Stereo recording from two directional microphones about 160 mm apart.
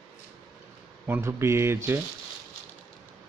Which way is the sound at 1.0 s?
15° right (ahead or behind).